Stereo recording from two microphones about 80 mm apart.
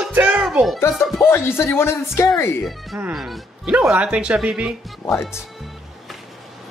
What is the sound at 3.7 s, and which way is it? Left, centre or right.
Music, centre.